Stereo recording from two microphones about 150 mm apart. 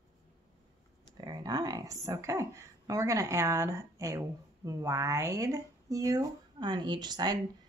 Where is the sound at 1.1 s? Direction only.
25° right (ahead or behind).